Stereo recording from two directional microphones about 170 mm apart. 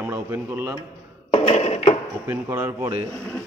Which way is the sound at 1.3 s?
40° left (ahead or behind).